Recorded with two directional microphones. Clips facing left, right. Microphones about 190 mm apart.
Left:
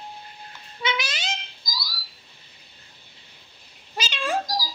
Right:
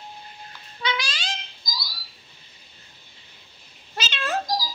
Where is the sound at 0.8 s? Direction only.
20° left (ahead or behind).